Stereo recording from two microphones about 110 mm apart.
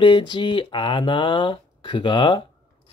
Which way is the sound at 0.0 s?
45° left (ahead or behind).